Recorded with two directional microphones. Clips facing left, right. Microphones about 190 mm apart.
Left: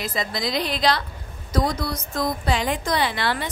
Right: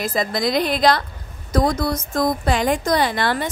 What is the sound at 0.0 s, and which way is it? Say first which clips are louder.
A woman's voice: right 6 dB; 50° right (ahead or behind).